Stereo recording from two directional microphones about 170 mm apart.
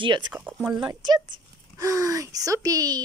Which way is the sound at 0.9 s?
25° right (ahead or behind).